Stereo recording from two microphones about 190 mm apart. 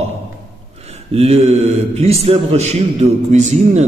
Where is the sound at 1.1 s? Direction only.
35° right (ahead or behind).